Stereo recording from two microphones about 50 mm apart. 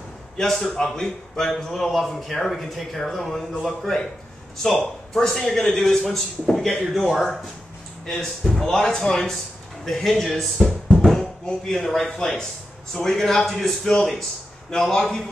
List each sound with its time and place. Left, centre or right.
0.4 s a man's voice: centre
11.0 s bouncing: centre
11.6 s a man's voice: centre